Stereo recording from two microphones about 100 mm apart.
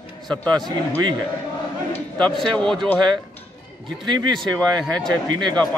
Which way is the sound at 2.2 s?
10° left (ahead or behind).